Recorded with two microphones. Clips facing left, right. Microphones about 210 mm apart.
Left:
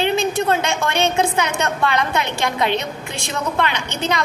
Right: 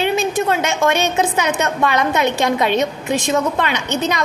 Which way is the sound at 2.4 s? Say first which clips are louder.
Right 4 dB; 20° right (ahead or behind).